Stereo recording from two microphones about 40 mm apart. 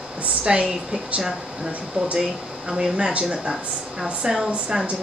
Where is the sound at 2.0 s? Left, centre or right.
Right; by 4.9 s centre.